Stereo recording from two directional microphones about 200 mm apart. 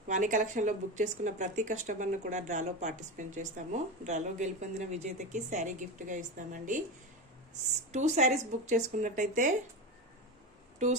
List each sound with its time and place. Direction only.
0.1 s speech: 40° right (ahead or behind)
7.9 s speech: 35° right (ahead or behind)